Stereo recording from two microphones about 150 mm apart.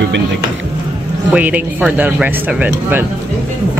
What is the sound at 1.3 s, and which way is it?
Speech, 10° right (ahead or behind).